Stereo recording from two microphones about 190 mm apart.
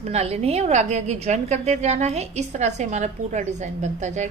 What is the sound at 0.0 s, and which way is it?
A woman's voice, 35° right (ahead or behind).